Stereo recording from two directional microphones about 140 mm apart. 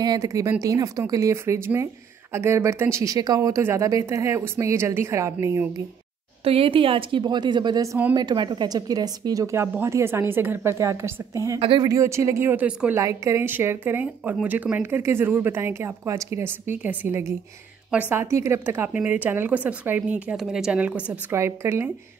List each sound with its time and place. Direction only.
0.0 s speech: 25° right (ahead or behind)
6.4 s speech: 40° right (ahead or behind); by 11.6 s 20° right (ahead or behind)
11.6 s speech: 40° right (ahead or behind)
11.9 s a woman's voice: 20° right (ahead or behind)